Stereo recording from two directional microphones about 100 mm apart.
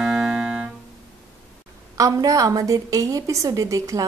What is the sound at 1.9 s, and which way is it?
A woman's voice, 35° right (ahead or behind).